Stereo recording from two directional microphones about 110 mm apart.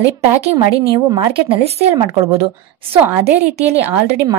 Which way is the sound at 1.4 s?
65° right (ahead or behind).